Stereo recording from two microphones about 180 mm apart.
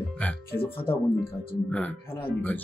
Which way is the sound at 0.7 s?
30° left (ahead or behind).